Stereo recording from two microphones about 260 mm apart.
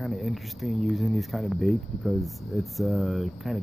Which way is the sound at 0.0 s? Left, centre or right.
Centre.